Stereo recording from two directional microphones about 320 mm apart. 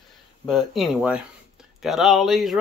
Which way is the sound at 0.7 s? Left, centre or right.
Centre.